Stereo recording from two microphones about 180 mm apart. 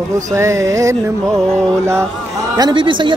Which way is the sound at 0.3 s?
15° right (ahead or behind).